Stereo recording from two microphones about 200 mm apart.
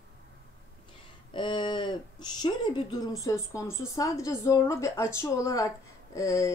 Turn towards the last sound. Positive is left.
turn(degrees=15)  # may be behind; listen again after turning